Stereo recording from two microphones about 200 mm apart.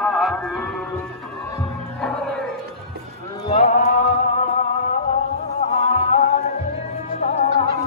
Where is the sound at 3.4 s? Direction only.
35° left (ahead or behind).